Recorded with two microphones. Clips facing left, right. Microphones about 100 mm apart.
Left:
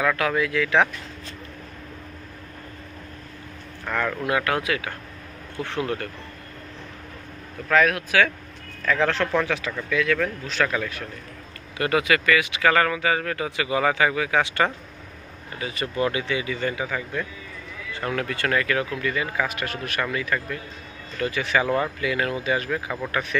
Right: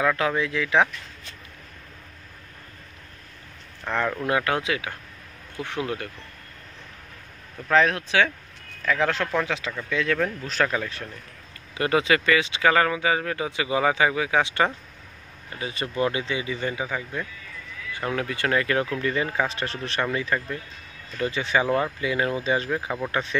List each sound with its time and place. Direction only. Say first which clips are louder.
0.0 s speech: left 1 dB; 20° right (ahead or behind)
3.8 s speech: even; 15° right (ahead or behind)
7.6 s speech: even; 30° right (ahead or behind)
8.8 s speech: left 2 dB; 15° right (ahead or behind)
9.8 s speech: left 1 dB; 25° right (ahead or behind)
22.0 s speech: even; 25° right (ahead or behind)